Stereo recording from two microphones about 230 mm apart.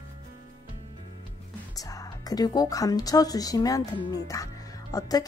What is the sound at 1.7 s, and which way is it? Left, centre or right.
Speech, centre.